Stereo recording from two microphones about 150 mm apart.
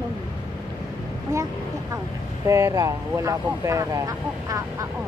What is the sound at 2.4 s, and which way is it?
Speech, 20° right (ahead or behind).